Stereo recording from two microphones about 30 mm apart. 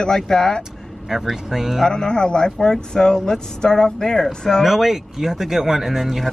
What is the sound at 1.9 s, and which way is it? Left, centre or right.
Speech, left.